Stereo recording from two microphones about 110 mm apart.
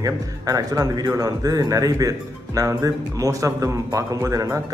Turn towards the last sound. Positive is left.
turn(degrees=-30)  # may be behind; listen again after turning